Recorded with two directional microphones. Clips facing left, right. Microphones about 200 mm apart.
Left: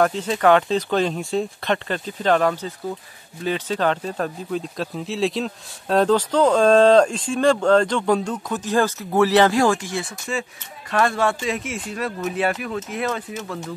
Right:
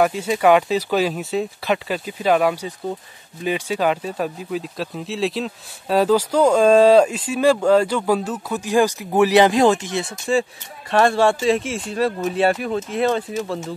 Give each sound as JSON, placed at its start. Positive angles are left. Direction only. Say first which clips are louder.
{"t": 0.0, "sound": "speech", "louder": "right 1 dB", "side_deg": -10}